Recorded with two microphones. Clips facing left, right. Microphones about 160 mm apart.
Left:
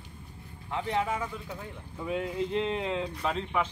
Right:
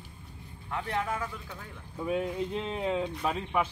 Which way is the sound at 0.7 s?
20° left (ahead or behind).